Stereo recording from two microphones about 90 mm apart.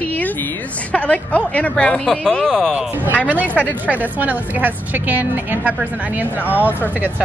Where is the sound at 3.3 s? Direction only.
20° right (ahead or behind).